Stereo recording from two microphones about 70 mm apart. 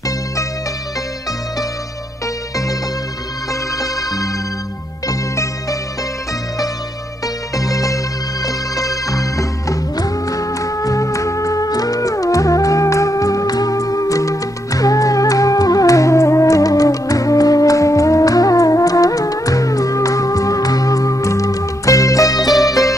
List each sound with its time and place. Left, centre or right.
3.7 s music: left
7.5 s music: left